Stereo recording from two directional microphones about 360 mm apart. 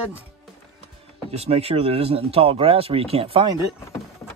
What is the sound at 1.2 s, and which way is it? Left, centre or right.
Speech, centre.